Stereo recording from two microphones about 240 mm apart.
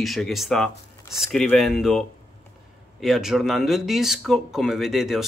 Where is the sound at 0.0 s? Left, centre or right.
Centre.